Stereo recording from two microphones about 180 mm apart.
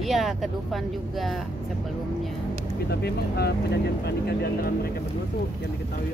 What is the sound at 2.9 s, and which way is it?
Speech, 65° left (ahead or behind).